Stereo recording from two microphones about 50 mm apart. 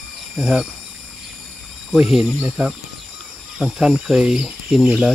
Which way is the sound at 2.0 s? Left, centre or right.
Centre.